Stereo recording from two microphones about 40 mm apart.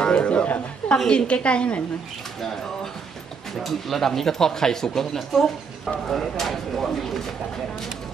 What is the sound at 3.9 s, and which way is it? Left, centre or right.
Speech, centre.